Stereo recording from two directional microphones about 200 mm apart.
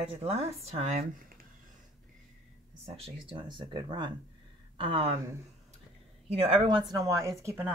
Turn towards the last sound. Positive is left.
turn(degrees=-15)  # may be behind; listen again after turning